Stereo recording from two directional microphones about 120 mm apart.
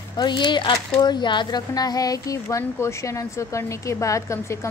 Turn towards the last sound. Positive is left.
turn(degrees=25)  # may be behind; listen again after turning